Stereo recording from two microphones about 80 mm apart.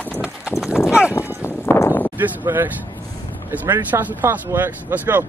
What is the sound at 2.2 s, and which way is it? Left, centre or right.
Speech, right.